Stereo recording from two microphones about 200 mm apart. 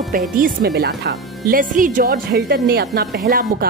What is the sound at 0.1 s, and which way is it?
Speech, 45° right (ahead or behind).